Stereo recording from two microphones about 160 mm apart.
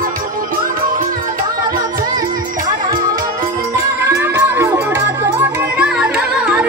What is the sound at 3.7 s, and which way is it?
Music, 15° right (ahead or behind).